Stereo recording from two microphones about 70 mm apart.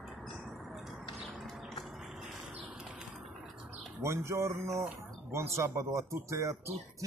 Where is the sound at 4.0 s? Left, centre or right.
Right.